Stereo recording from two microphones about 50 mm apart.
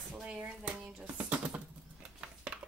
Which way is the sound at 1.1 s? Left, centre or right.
Right.